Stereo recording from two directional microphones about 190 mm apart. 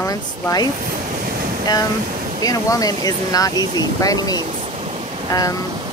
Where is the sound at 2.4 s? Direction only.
20° left (ahead or behind).